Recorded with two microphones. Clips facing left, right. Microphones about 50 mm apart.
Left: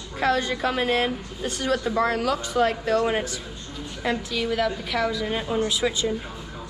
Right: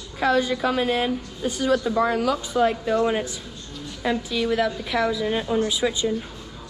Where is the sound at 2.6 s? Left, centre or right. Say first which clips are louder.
Right 1 dB; left.